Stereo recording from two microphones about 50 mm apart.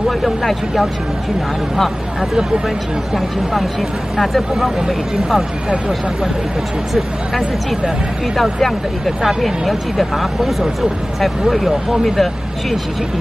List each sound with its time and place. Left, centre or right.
0.2 s speech: centre
4.2 s speech: centre
6.9 s speech: centre